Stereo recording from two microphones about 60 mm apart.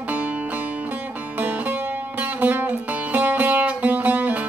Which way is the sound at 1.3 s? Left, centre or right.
Right.